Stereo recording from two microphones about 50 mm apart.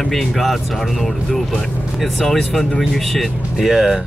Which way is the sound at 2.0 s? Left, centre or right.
Centre.